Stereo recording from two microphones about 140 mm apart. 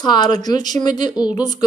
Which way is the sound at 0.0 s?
30° left (ahead or behind).